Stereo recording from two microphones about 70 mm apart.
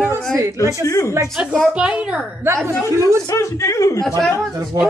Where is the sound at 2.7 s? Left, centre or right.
Right.